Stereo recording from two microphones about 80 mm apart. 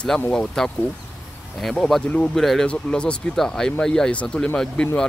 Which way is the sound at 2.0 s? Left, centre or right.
Centre.